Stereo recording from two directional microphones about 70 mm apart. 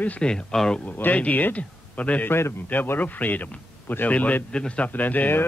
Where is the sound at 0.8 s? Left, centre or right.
Left.